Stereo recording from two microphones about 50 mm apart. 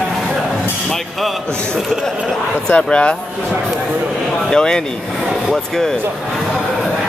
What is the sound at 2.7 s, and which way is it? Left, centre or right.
Speech, left.